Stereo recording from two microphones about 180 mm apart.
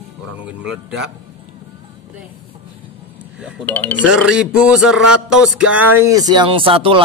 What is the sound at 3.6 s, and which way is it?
Speech, 10° left (ahead or behind).